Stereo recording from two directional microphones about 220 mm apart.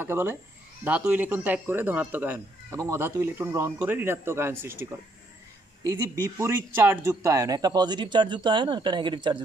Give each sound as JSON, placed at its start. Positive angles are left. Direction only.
{"t": 0.0, "sound": "speech", "side_deg": -10}
{"t": 5.9, "sound": "speech", "side_deg": -15}